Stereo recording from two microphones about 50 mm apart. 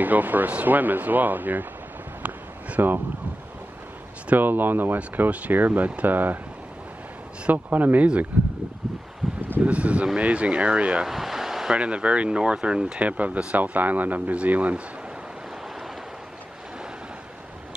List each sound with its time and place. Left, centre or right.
0.0 s speech: right
2.8 s speech: right
4.4 s speech: right
6.1 s speech: right
7.5 s speech: right
9.2 s a sound: centre
9.6 s speech: right
11.1 s a sound: centre
11.7 s speech: right
13.0 s speech: right